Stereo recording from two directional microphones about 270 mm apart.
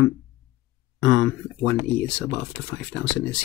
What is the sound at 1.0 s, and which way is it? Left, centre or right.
Speech, left.